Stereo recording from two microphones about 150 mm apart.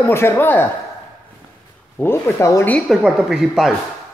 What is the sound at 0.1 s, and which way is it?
Speech, 15° left (ahead or behind).